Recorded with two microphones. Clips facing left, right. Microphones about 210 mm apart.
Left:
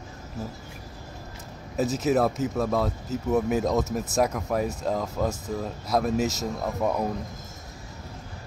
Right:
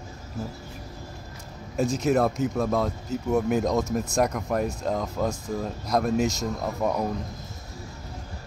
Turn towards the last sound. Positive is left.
turn(degrees=5)  # may be behind; listen again after turning